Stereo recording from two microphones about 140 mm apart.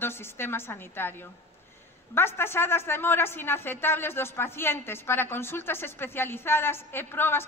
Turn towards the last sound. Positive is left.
turn(degrees=15)  # may be behind; listen again after turning